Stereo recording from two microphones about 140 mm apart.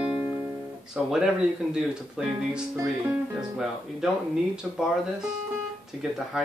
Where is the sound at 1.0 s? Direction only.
5° right (ahead or behind).